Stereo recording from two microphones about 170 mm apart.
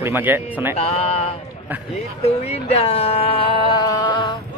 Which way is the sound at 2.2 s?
40° left (ahead or behind).